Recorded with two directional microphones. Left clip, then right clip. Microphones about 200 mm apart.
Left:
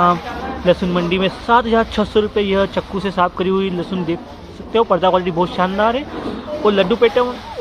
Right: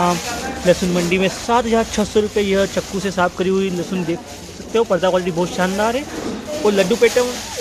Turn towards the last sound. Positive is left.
turn(degrees=-10)  # may be behind; listen again after turning